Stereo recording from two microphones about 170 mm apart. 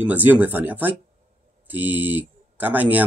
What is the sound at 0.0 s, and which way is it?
Speech, 10° right (ahead or behind).